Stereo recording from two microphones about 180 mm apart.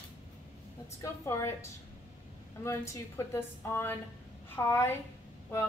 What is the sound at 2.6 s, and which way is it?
A woman's voice, 15° left (ahead or behind).